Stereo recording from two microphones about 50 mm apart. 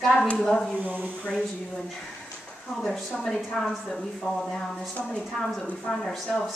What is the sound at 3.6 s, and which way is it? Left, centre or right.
A woman's voice, centre.